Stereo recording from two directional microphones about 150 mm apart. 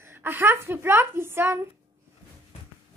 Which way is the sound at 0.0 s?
15° right (ahead or behind).